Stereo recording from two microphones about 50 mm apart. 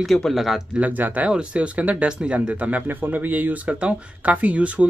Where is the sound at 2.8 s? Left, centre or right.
Right.